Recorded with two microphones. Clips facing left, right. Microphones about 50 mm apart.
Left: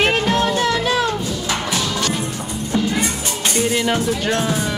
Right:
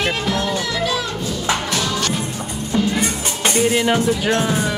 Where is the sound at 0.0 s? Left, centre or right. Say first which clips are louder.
Left 4 dB; left.